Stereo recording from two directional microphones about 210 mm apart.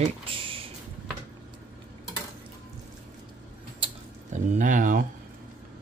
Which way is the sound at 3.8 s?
35° right (ahead or behind).